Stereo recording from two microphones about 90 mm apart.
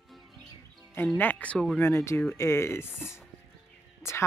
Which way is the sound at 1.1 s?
20° left (ahead or behind).